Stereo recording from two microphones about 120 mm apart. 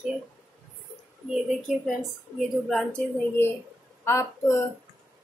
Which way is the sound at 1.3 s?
5° right (ahead or behind).